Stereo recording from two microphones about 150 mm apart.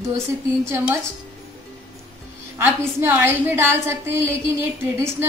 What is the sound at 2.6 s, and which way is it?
A woman's voice, 15° right (ahead or behind).